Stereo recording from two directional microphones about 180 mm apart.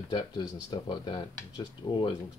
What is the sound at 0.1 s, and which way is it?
Speech, 25° left (ahead or behind).